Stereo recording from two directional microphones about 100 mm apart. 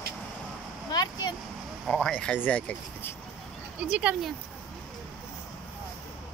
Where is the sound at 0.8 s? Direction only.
45° left (ahead or behind).